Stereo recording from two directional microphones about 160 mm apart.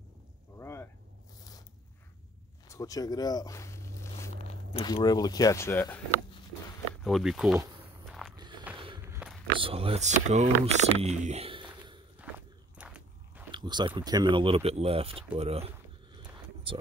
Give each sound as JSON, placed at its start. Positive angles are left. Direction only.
{"t": 0.6, "sound": "a sound", "side_deg": 15}
{"t": 2.7, "sound": "zipper", "side_deg": 20}
{"t": 4.7, "sound": "speech", "side_deg": 25}
{"t": 7.0, "sound": "speech", "side_deg": 0}
{"t": 8.1, "sound": "walk", "side_deg": 0}
{"t": 8.7, "sound": "a sound", "side_deg": -30}
{"t": 9.0, "sound": "a sound", "side_deg": -15}
{"t": 9.6, "sound": "speech", "side_deg": -35}
{"t": 12.2, "sound": "walk", "side_deg": -10}
{"t": 12.7, "sound": "biting", "side_deg": -10}
{"t": 13.5, "sound": "speech", "side_deg": -30}